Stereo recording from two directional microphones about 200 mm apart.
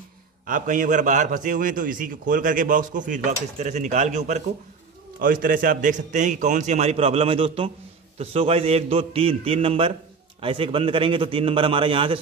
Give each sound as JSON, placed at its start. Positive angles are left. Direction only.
{"t": 0.5, "sound": "a man's voice", "side_deg": -40}